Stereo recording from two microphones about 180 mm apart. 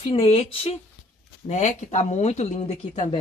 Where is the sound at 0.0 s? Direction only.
30° left (ahead or behind).